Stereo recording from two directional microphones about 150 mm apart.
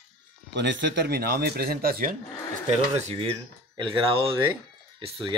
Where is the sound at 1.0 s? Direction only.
90° right.